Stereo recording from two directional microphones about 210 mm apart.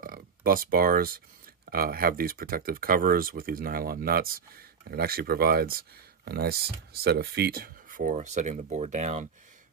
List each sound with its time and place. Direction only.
0.0 s speech: 45° right (ahead or behind)